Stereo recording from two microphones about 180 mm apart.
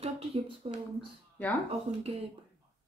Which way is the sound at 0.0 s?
35° right (ahead or behind).